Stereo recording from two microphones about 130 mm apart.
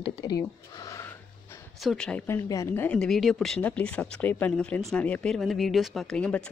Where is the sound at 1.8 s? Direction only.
5° left (ahead or behind).